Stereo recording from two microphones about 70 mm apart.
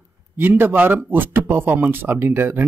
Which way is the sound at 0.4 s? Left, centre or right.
Right.